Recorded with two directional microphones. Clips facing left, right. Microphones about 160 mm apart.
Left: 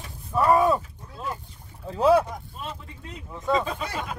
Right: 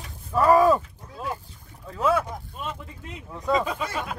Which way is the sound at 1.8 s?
30° left (ahead or behind).